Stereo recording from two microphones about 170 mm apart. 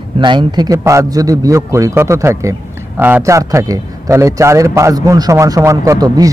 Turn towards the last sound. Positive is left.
turn(degrees=-20)  # may be behind; listen again after turning